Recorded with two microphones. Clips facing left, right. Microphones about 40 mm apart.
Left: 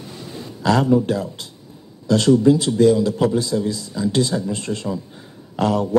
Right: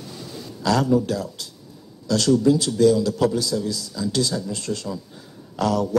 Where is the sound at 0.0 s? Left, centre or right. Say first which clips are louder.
Left 2 dB; left.